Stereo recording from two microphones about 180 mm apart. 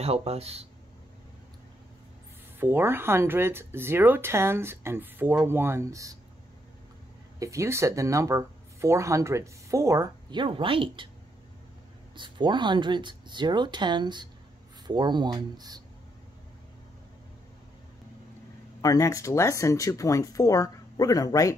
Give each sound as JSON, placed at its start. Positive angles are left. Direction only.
{"t": 0.0, "sound": "speech", "side_deg": -35}
{"t": 2.6, "sound": "speech", "side_deg": -10}
{"t": 7.3, "sound": "speech", "side_deg": -15}
{"t": 12.2, "sound": "speech", "side_deg": -25}
{"t": 18.8, "sound": "speech", "side_deg": 20}